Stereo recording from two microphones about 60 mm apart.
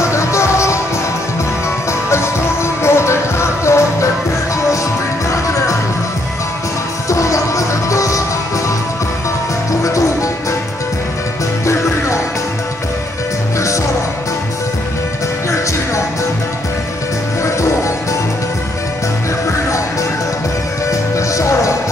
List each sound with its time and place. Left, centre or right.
0.0 s music: left
1.9 s music: left
5.3 s music: left
7.1 s music: left
9.7 s music: left
11.6 s music: left
17.4 s music: left
20.9 s music: left